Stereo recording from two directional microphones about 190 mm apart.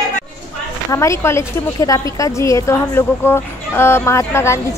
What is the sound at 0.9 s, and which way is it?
A woman's voice, 15° left (ahead or behind).